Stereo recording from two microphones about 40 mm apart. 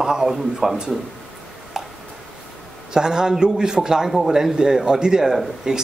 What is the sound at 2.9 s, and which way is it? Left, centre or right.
Speech, centre.